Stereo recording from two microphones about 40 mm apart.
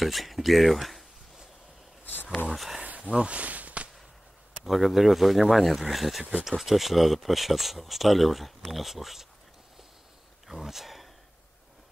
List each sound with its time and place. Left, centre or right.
0.0 s speech: centre
2.5 s speech: centre
3.0 s a sound: right
4.6 s speech: centre
10.5 s speech: centre